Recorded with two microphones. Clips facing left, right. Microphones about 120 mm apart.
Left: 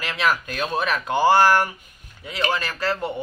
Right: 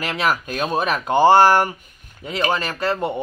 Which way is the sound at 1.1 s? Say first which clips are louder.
Right 4 dB; 25° right (ahead or behind).